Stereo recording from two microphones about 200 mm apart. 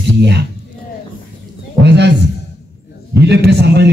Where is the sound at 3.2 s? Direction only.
55° right (ahead or behind).